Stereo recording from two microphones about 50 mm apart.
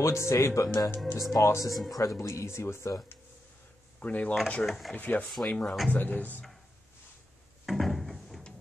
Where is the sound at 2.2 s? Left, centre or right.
Left.